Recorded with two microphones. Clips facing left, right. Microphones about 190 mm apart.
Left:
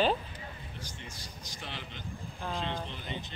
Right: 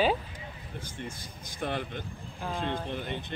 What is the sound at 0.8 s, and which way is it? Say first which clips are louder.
Speech: right 6 dB; 55° right (ahead or behind).